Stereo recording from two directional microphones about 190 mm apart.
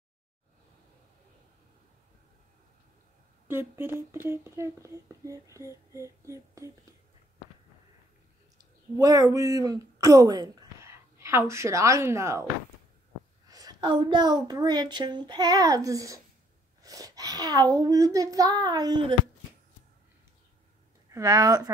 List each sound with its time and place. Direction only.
3.4 s speech: 10° right (ahead or behind)
8.9 s speech: 20° right (ahead or behind)
13.5 s a woman's voice: 20° right (ahead or behind)
21.1 s speech: 15° right (ahead or behind)